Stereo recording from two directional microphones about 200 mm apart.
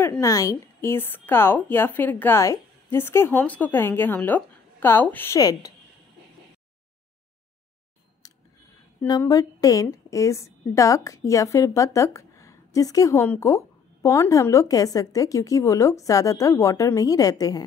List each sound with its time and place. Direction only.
0.0 s a woman's voice: 15° left (ahead or behind)
8.2 s a sound: 15° left (ahead or behind)
9.0 s a woman's voice: 20° left (ahead or behind)